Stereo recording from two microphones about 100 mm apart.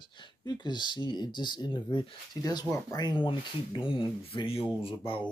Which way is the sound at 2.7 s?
40° left (ahead or behind).